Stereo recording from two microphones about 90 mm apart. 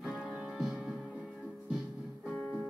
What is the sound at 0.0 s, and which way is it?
Music, 5° right (ahead or behind).